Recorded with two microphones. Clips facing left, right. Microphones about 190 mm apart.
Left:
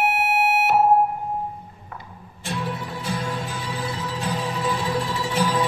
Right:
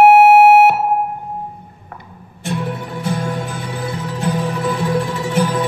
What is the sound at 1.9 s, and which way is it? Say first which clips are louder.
Music: right 3 dB; 55° right (ahead or behind).